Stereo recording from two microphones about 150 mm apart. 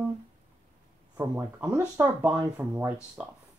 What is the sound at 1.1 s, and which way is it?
Speech, 15° right (ahead or behind).